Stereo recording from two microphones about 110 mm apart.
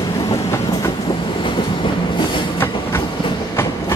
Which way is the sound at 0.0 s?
35° left (ahead or behind).